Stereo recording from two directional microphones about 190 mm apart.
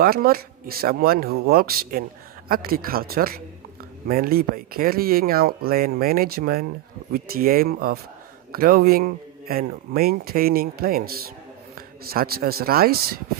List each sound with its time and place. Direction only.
0.0 s speech: 50° right (ahead or behind)